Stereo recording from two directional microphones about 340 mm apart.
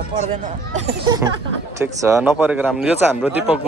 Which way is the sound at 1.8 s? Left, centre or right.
Centre.